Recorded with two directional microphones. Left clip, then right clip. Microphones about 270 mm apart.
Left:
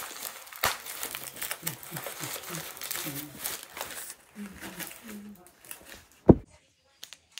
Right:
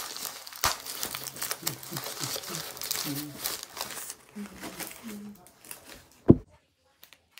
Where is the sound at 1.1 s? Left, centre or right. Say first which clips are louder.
Right 2 dB; centre.